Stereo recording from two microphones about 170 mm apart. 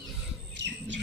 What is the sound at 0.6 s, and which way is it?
Bird, 90° right.